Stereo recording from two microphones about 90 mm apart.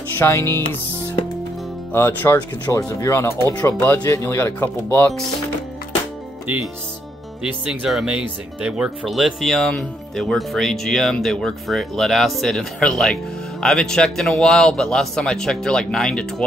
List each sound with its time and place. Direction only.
0.3 s speech: 30° left (ahead or behind)
1.9 s speech: 30° left (ahead or behind)
2.7 s speech: 15° left (ahead or behind)
3.0 s speech: 30° left (ahead or behind)
4.9 s speech: 15° left (ahead or behind)
7.4 s speech: 10° right (ahead or behind); by 16.4 s 10° left (ahead or behind)